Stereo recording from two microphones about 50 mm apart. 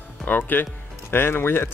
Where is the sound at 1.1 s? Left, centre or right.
Left.